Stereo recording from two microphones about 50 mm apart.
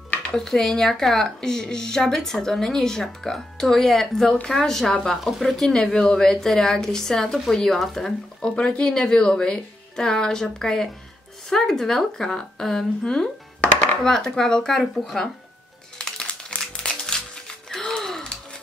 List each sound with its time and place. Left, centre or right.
0.3 s speech: centre
5.7 s speech: centre
13.6 s music: left
14.0 s speech: centre
16.0 s music: centre
17.6 s gasp: centre
18.2 s a sound: centre